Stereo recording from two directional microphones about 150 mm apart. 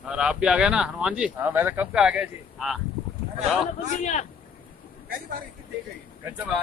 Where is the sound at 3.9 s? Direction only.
55° left (ahead or behind).